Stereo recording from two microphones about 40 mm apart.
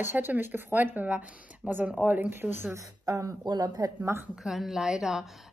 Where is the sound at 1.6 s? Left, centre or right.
Right.